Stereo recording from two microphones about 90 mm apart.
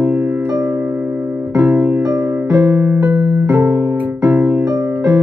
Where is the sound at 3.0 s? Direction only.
15° right (ahead or behind).